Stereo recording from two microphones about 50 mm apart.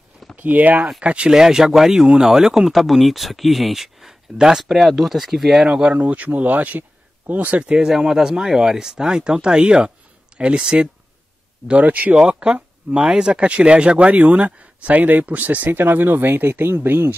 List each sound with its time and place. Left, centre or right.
0.4 s speech: right
1.3 s speech: centre
5.7 s speech: right
6.0 s speech: right
7.7 s speech: centre
11.8 s speech: right
12.3 s speech: right